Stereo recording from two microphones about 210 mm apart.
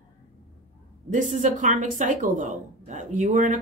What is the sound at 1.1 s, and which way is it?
Speech, 35° right (ahead or behind).